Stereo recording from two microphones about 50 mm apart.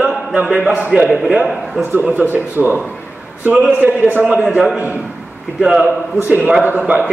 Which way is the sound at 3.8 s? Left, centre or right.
Right.